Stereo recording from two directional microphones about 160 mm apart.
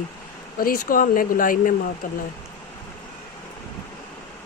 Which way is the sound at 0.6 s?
60° left (ahead or behind).